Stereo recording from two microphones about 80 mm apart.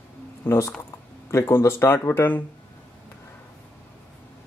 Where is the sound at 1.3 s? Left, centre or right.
Left.